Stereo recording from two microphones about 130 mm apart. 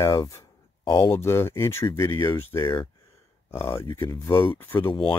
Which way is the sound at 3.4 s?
20° left (ahead or behind).